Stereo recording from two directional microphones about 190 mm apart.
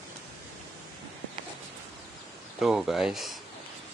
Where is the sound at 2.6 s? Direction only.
Centre (ahead or behind).